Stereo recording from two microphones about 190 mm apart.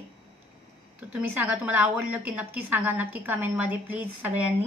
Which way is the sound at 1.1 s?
10° right (ahead or behind).